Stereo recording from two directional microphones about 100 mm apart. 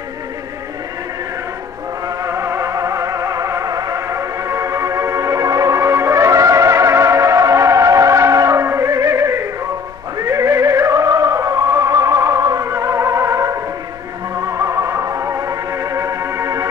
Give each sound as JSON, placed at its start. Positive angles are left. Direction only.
{"t": 2.2, "sound": "music", "side_deg": -30}